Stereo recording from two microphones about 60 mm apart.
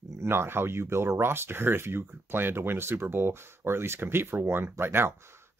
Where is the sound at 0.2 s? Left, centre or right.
Right.